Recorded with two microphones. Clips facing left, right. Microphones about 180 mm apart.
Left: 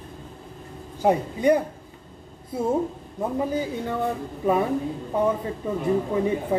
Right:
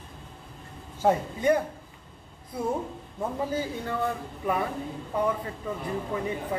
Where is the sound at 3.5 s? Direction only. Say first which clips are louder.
Left 4 dB; 20° left (ahead or behind).